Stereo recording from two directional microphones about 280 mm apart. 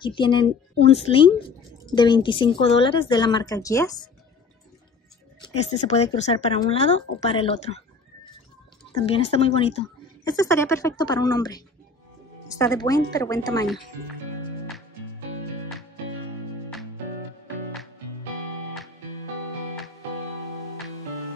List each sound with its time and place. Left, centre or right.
0.0 s a woman's voice: centre
5.4 s speech: left
8.9 s a woman's voice: centre